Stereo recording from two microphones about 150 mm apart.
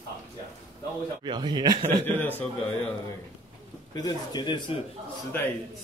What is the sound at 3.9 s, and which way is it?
Speech, 25° left (ahead or behind).